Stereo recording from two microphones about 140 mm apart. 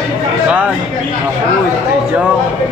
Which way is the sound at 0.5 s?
10° right (ahead or behind).